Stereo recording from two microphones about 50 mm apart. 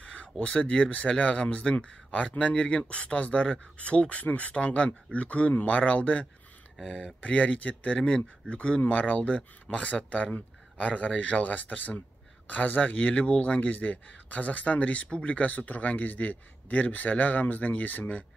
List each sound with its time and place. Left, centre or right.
0.0 s a sound: left
0.5 s speech: left
7.2 s speech: left